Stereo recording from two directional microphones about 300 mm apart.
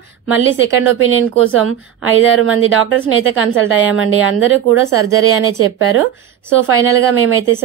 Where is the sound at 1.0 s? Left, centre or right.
Right.